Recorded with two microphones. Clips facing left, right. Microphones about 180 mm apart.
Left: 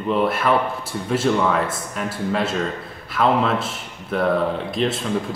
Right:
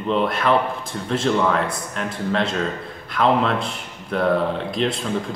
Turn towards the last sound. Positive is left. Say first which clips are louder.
# even
turn(degrees=0)  # may be behind; listen again after turning